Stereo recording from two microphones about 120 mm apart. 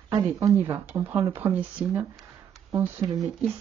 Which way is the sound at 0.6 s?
15° right (ahead or behind).